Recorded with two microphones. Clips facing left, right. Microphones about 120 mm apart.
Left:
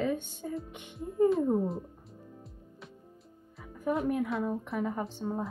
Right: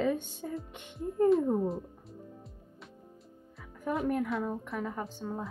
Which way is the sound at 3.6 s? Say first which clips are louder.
Left 2 dB; 5° left (ahead or behind).